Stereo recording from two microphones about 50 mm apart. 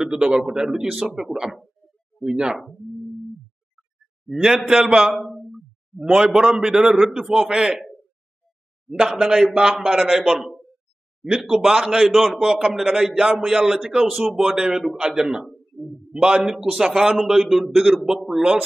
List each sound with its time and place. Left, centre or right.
0.0 s a man's voice: centre
4.3 s a man's voice: centre
5.1 s a sound: centre
5.5 s a man's voice: centre
8.8 s a man's voice: centre
15.7 s a man's voice: right
16.1 s a man's voice: centre